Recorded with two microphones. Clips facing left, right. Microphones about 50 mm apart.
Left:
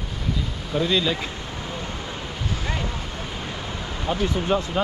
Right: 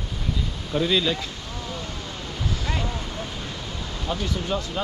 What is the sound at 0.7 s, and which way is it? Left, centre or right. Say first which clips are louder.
Speech: even; centre.